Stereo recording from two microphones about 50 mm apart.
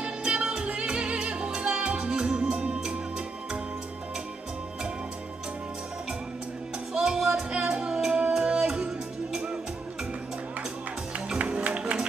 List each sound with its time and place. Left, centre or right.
0.0 s music: right
7.2 s music: centre
11.1 s music: right